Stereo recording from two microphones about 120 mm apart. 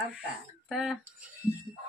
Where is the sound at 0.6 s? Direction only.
Centre (ahead or behind).